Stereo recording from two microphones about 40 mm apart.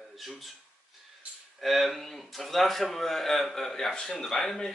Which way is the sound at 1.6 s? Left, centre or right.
Centre.